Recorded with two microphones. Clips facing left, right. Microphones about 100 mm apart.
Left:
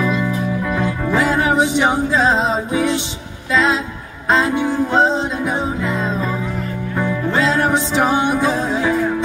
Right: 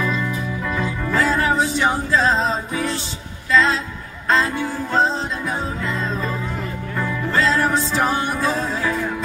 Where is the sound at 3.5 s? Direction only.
10° left (ahead or behind).